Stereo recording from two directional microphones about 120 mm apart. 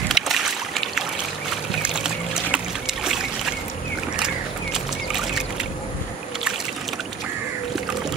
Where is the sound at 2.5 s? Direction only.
5° right (ahead or behind).